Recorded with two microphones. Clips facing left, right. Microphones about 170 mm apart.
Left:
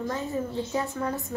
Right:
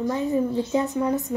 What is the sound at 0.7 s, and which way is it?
Speech, 20° right (ahead or behind).